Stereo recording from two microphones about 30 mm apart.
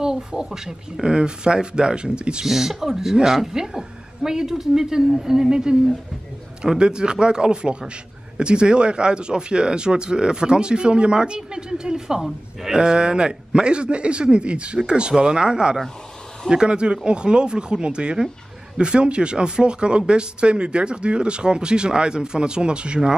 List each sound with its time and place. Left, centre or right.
0.0 s a man's voice: right
1.0 s speech: right
2.4 s a woman's voice: centre
6.8 s a man's voice: right